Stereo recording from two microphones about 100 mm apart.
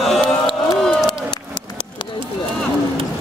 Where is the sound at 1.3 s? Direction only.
50° left (ahead or behind).